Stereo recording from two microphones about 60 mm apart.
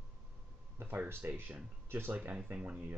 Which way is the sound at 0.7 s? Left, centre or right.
Right.